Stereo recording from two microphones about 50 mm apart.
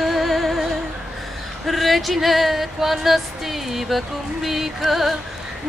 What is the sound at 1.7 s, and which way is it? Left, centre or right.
Speech, centre.